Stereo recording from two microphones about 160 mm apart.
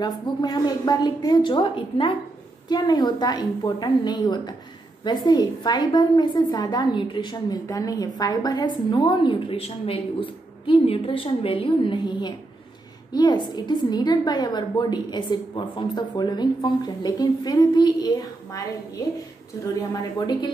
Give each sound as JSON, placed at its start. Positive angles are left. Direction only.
{"t": 0.0, "sound": "a woman's voice", "side_deg": 25}